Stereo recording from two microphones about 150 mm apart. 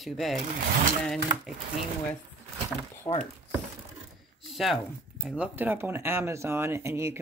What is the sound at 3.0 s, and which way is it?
Speech, 35° left (ahead or behind).